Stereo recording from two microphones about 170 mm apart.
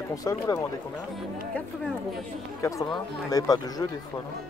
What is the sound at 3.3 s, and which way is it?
Speech, 20° left (ahead or behind).